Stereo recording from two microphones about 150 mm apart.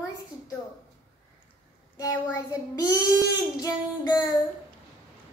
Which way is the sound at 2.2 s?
20° left (ahead or behind).